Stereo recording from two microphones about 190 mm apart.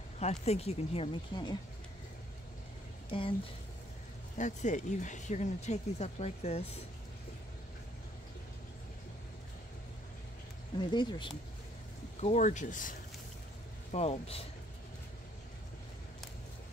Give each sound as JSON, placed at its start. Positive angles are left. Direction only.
{"t": 0.2, "sound": "speech", "side_deg": 35}
{"t": 3.1, "sound": "speech", "side_deg": 25}
{"t": 4.4, "sound": "speech", "side_deg": 40}
{"t": 10.8, "sound": "speech", "side_deg": 25}
{"t": 12.2, "sound": "speech", "side_deg": 40}
{"t": 13.9, "sound": "speech", "side_deg": 35}